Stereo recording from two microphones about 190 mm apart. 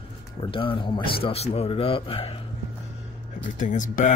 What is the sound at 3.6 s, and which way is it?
Speech, 40° left (ahead or behind).